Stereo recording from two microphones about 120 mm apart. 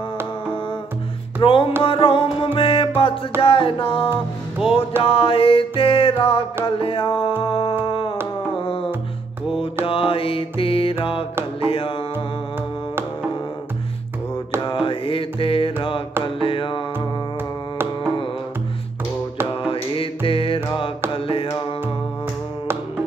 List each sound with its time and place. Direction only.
1.4 s music: 50° left (ahead or behind)
7.8 s a sound: 45° left (ahead or behind)
8.5 s music: 50° left (ahead or behind)
9.8 s mantra: 50° left (ahead or behind)
11.6 s music: 50° left (ahead or behind)
14.9 s music: 50° left (ahead or behind)
19.6 s music: 50° left (ahead or behind)
21.1 s mantra: 50° left (ahead or behind)